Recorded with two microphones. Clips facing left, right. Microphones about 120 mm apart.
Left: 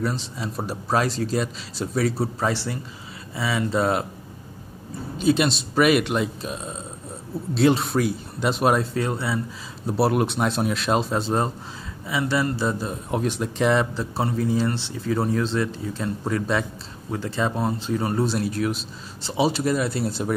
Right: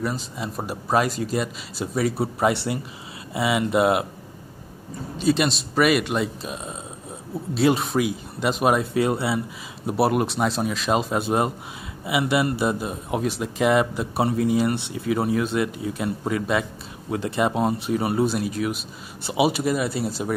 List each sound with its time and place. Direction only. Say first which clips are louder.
0.0 s speech: even; 10° right (ahead or behind)
5.3 s speech: left 1 dB; centre (ahead or behind)
8.9 s speech: right 3 dB; 20° right (ahead or behind)
10.0 s speech: even; centre (ahead or behind)
13.1 s speech: even; 5° right (ahead or behind)
14.1 s speech: right 3 dB; 20° right (ahead or behind)
17.1 s speech: right 3 dB; 15° right (ahead or behind)